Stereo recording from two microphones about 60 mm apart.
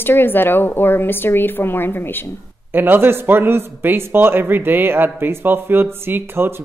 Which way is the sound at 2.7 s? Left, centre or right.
Right.